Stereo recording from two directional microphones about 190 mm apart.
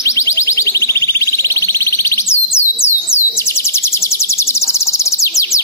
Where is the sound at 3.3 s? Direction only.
15° left (ahead or behind).